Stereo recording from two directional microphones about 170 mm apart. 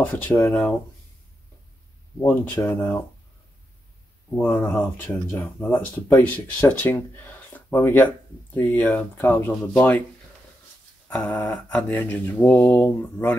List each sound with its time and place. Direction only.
0.0 s speech: 10° left (ahead or behind)
2.1 s speech: 15° left (ahead or behind)
4.4 s speech: 10° left (ahead or behind)
11.1 s speech: 10° left (ahead or behind)